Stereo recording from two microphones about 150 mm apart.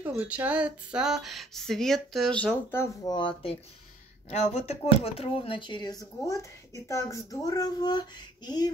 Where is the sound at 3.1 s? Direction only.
35° left (ahead or behind).